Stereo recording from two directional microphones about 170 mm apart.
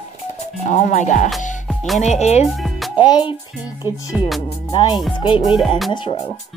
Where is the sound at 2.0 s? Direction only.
40° left (ahead or behind).